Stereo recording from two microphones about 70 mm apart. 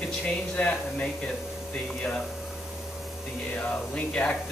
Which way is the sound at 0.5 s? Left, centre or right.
Centre.